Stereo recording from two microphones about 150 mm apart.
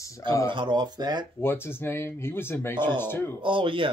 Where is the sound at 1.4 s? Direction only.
15° left (ahead or behind).